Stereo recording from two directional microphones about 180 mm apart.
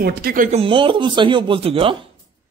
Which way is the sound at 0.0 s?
55° right (ahead or behind).